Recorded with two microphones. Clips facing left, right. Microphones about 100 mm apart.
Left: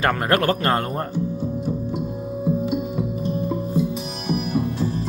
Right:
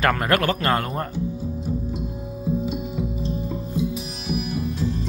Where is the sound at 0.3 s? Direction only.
35° left (ahead or behind).